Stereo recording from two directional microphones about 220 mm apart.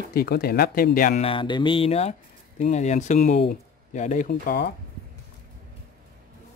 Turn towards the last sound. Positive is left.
turn(degrees=50)  # may be behind; listen again after turning